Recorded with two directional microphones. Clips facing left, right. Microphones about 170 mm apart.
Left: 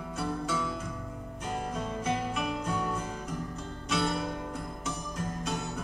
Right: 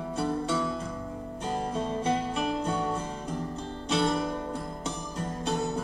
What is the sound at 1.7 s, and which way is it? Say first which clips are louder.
Music: right 4 dB; 30° right (ahead or behind).